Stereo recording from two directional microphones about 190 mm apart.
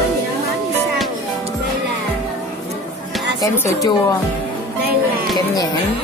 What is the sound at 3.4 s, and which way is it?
Speech, 20° left (ahead or behind).